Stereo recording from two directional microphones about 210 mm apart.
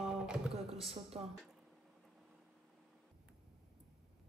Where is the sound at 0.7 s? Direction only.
30° right (ahead or behind).